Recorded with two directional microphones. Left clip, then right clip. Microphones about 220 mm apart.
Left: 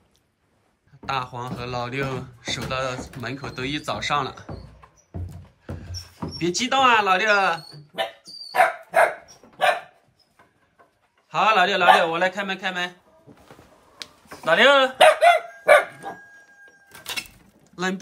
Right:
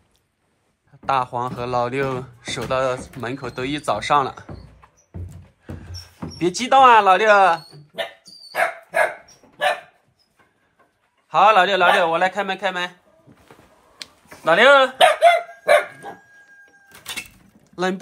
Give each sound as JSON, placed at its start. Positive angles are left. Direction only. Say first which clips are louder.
{"t": 1.0, "sound": "speech", "louder": "right 7 dB", "side_deg": 0}
{"t": 5.8, "sound": "mouse", "louder": "left 2 dB", "side_deg": 0}
{"t": 11.2, "sound": "speech", "louder": "right 5 dB", "side_deg": 0}
{"t": 14.0, "sound": "a sound", "louder": "right 1 dB", "side_deg": 20}
{"t": 14.4, "sound": "dog", "louder": "right 3 dB", "side_deg": 5}
{"t": 17.6, "sound": "a sound", "louder": "right 4 dB", "side_deg": 0}